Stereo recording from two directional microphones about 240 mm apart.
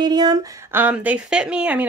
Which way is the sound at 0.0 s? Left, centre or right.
Centre.